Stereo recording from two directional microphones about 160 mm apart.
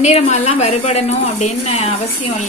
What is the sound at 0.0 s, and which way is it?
A woman's voice, 45° left (ahead or behind).